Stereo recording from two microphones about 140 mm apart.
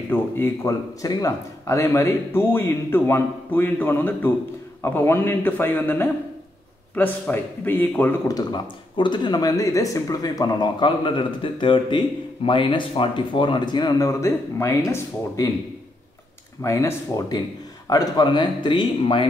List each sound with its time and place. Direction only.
0.1 s speech: 15° left (ahead or behind)
8.3 s speech: 30° left (ahead or behind)
16.6 s speech: 20° left (ahead or behind)